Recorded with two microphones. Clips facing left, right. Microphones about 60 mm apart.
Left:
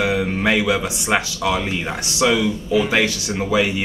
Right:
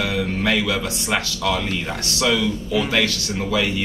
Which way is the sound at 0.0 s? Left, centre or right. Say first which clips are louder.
Left 3 dB; centre.